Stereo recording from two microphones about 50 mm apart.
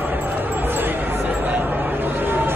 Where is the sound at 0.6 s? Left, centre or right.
Right.